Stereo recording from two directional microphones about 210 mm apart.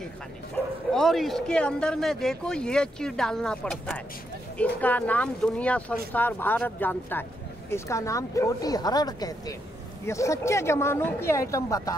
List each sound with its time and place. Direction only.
0.9 s speech: centre (ahead or behind)